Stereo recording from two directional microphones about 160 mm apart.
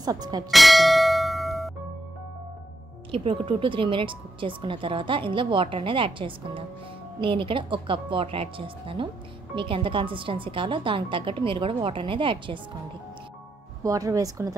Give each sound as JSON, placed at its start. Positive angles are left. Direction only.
{"t": 0.0, "sound": "speech", "side_deg": -25}
{"t": 0.5, "sound": "bell", "side_deg": 0}
{"t": 3.1, "sound": "speech", "side_deg": -35}
{"t": 13.8, "sound": "speech", "side_deg": -20}